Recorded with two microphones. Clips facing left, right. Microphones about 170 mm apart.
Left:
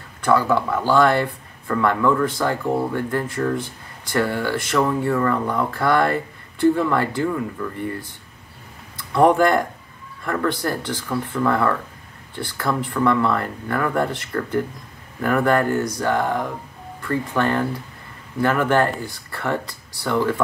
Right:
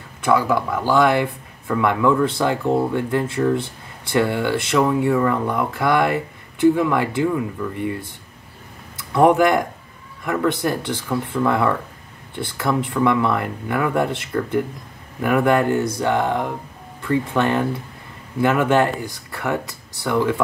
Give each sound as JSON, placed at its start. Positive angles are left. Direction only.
{"t": 0.2, "sound": "speech", "side_deg": -10}
{"t": 9.3, "sound": "speech", "side_deg": -10}